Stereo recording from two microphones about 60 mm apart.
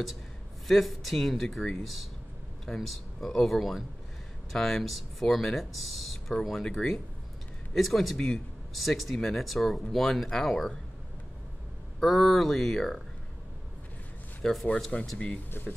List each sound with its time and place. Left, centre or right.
0.7 s speech: centre
12.0 s speech: centre
14.4 s speech: centre
15.1 s speech: left